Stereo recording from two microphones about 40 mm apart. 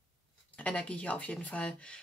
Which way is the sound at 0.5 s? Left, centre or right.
Left.